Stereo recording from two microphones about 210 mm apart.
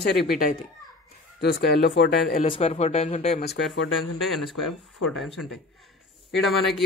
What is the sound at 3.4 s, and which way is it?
Speech, 55° left (ahead or behind).